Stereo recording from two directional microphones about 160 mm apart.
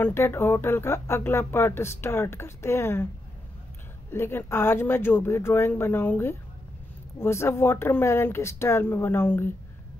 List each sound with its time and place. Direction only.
0.0 s speech: 15° left (ahead or behind)
4.1 s speech: 15° left (ahead or behind)